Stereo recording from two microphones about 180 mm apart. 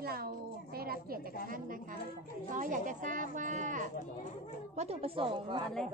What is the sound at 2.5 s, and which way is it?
Speech, 45° right (ahead or behind).